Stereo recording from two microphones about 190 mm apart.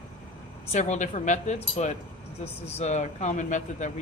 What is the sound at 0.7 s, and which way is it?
A woman's voice, 35° left (ahead or behind).